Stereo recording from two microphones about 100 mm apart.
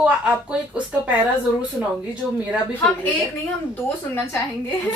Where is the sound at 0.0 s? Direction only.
10° right (ahead or behind).